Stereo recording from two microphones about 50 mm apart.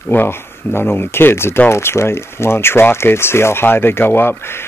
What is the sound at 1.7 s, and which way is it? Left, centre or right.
Speech, left.